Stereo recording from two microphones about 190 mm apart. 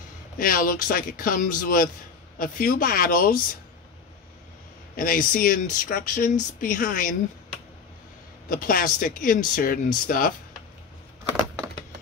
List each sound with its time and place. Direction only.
0.4 s speech: 45° left (ahead or behind)
4.9 s speech: 50° left (ahead or behind)
8.5 s speech: 50° left (ahead or behind)